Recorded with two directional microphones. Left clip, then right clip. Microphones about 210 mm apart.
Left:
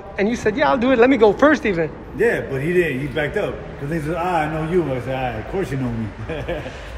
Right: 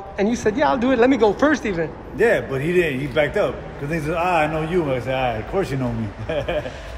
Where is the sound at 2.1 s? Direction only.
35° right (ahead or behind).